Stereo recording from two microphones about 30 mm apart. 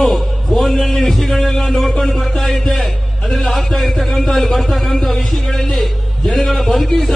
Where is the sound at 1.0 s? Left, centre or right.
Centre.